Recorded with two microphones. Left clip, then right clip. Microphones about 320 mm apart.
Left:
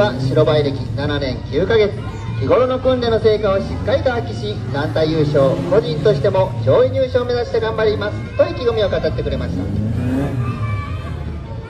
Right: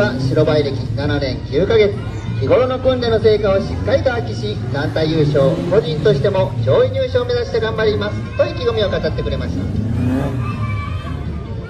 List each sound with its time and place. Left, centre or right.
0.0 s a man's voice: centre